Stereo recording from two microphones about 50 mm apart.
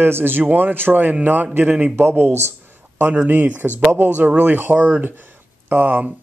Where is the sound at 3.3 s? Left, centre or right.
Right.